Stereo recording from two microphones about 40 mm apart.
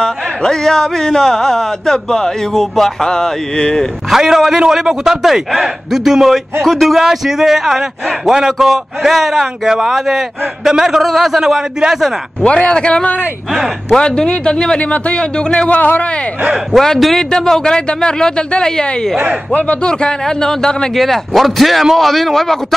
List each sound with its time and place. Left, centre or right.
0.0 s speech: centre
3.1 s speech: centre
4.1 s a man's voice: centre
6.6 s speech: centre
7.0 s a man's voice: centre
11.1 s speech: centre
11.4 s a man's voice: centre
12.4 s a man's voice: left
14.8 s a man's voice: left
15.7 s speech: left
17.2 s a man's voice: centre
20.9 s speech: centre